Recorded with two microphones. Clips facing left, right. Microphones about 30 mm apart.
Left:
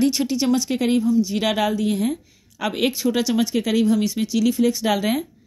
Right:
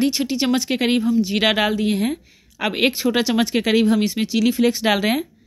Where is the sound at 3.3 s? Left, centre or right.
Right.